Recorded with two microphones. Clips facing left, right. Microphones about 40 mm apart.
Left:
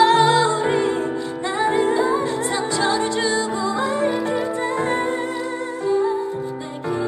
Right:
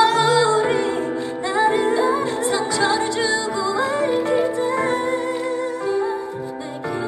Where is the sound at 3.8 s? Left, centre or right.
Right.